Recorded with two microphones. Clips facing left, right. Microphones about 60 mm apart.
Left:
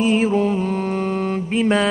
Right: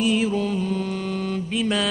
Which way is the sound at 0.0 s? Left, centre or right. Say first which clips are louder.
Left 5 dB; left.